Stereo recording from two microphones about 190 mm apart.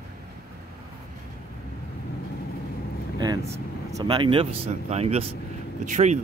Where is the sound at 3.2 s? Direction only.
20° right (ahead or behind).